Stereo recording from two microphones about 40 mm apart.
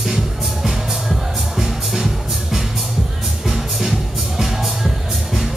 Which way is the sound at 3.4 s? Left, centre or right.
Centre.